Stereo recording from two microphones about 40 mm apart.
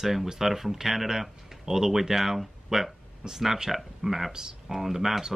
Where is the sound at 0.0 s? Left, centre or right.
Centre.